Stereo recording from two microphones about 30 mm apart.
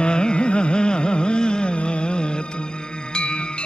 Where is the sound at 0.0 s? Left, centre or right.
Left.